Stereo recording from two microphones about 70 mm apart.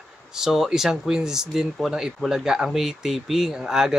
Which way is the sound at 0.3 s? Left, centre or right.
Centre.